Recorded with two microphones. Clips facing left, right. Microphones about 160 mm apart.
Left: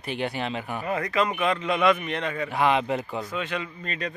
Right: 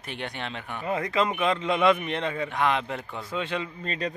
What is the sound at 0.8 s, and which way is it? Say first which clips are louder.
Speech: even; 20° right (ahead or behind).